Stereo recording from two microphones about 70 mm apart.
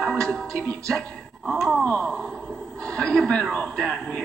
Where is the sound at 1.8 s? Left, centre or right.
Centre.